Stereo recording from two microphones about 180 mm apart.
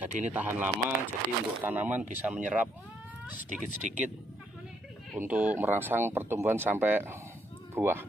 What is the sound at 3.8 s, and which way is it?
Speech, 40° right (ahead or behind).